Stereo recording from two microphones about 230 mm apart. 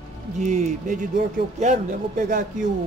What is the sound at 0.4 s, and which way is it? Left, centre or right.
Speech, right.